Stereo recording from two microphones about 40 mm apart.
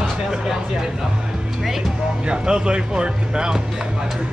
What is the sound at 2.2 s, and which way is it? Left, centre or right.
Speech, right.